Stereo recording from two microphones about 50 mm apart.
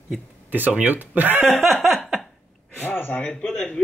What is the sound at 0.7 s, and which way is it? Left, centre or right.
Speech, right.